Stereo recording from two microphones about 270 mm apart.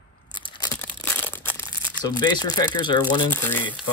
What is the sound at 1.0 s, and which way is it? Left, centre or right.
Speech, centre.